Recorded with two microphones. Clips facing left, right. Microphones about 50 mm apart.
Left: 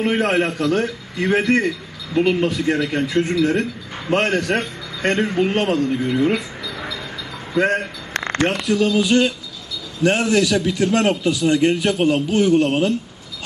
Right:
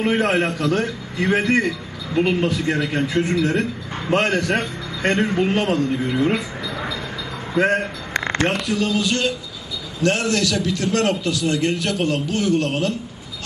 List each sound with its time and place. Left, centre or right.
0.0 s a man's voice: centre
2.3 s a man's voice: centre
7.5 s a man's voice: centre
9.0 s a man's voice: centre